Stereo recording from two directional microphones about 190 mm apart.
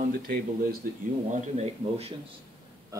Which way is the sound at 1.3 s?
35° right (ahead or behind).